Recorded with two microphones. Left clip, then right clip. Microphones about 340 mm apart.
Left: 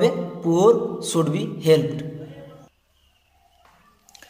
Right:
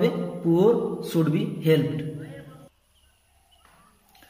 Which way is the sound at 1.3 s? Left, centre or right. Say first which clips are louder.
Left 6 dB; centre.